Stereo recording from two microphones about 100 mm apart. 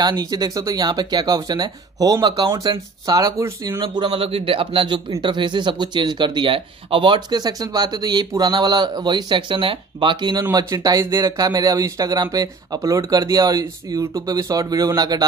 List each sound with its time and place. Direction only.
0.0 s speech: 40° right (ahead or behind)
3.8 s a man's voice: 55° right (ahead or behind)
10.6 s speech: 35° right (ahead or behind)